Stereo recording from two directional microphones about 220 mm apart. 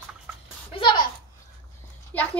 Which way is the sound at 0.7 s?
20° left (ahead or behind).